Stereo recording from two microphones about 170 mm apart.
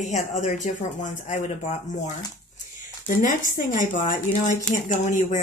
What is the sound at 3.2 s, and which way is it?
Speech, 50° left (ahead or behind).